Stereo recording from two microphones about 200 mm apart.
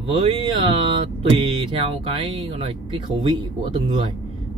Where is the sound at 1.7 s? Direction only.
25° right (ahead or behind).